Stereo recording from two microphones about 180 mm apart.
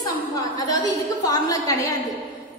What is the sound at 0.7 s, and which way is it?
A woman's voice, 20° left (ahead or behind).